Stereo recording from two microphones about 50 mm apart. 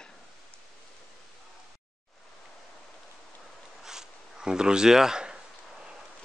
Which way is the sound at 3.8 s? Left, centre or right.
Centre.